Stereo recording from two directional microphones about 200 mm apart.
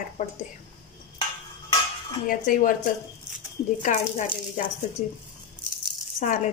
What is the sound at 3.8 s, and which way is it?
Speech, 40° left (ahead or behind).